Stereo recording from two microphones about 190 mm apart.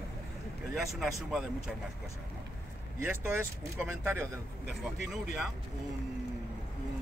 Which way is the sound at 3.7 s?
10° right (ahead or behind).